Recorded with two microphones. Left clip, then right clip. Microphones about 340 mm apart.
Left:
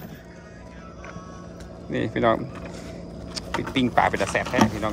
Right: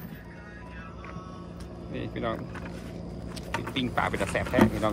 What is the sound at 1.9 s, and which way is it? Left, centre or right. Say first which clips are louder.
Speech: left 11 dB; centre.